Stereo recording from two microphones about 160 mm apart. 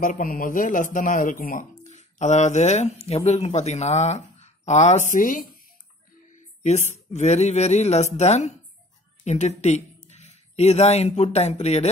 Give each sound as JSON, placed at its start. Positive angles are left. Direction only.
{"t": 0.0, "sound": "speech", "side_deg": 55}
{"t": 6.3, "sound": "a sound", "side_deg": 45}
{"t": 6.9, "sound": "speech", "side_deg": 45}